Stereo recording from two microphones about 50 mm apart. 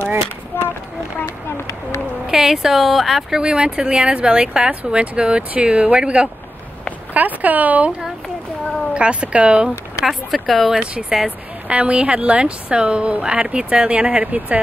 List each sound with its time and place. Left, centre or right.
0.5 s a sound: left
2.2 s speech: centre
7.2 s speech: right
8.9 s speech: right
10.0 s speech: centre
11.2 s speech: right